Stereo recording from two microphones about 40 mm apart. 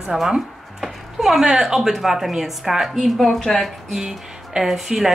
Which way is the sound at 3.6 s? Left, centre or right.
Centre.